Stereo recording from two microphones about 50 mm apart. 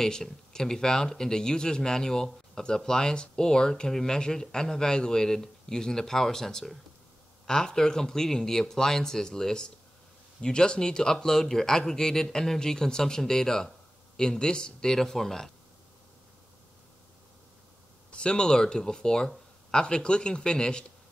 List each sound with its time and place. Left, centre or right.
0.0 s speech: centre
18.1 s speech: centre